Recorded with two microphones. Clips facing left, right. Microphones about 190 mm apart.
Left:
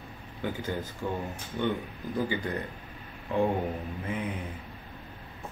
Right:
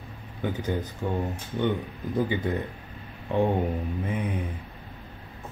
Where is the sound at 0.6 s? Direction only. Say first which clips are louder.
Right 5 dB; 20° right (ahead or behind).